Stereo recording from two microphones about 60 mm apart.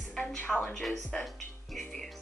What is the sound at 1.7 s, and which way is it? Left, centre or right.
Music, centre.